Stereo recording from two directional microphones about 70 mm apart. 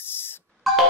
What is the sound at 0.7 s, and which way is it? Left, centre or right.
Music, centre.